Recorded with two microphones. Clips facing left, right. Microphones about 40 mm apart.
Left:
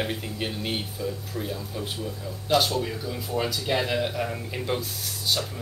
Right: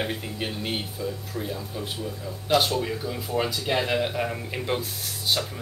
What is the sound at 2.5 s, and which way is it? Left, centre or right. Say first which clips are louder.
Speech: right 1 dB; centre.